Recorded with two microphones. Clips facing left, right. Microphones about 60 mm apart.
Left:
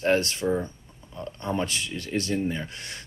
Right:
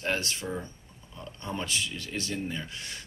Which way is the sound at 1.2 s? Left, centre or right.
Left.